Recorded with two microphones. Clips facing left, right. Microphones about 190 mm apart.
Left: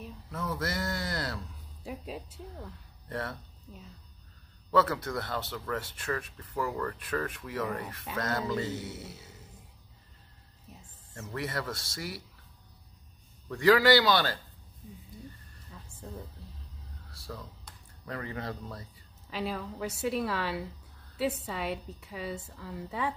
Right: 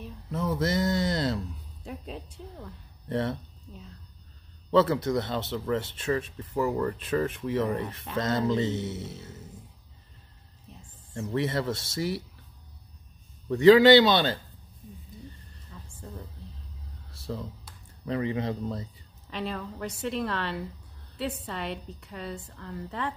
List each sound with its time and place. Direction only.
0.3 s speech: 20° right (ahead or behind)
1.8 s a woman's voice: 5° left (ahead or behind)
3.1 s speech: 25° right (ahead or behind)
4.6 s speech: 25° right (ahead or behind)
10.7 s music: 5° left (ahead or behind)
11.1 s speech: 25° right (ahead or behind)
13.5 s speech: 20° right (ahead or behind)
15.7 s music: 5° left (ahead or behind)
17.1 s a sound: 25° right (ahead or behind)
18.0 s speech: 20° right (ahead or behind)
19.3 s a woman's voice: 5° left (ahead or behind)